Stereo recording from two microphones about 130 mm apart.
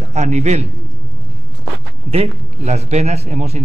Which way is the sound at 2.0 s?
55° right (ahead or behind).